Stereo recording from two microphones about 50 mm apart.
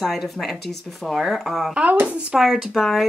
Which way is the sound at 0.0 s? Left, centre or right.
Centre.